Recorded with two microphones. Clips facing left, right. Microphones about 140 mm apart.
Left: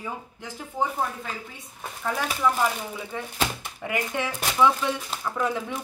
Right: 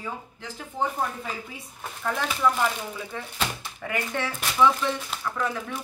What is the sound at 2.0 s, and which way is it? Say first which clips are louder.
Speech: even; 5° left (ahead or behind).